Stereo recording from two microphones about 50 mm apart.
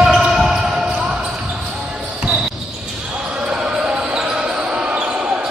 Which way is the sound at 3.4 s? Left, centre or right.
Centre.